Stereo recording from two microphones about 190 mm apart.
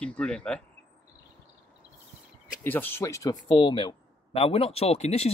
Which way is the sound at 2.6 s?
10° left (ahead or behind).